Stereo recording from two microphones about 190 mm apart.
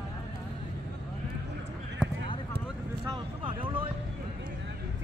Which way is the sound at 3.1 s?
25° right (ahead or behind).